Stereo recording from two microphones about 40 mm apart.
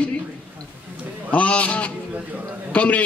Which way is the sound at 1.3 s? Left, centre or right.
Left.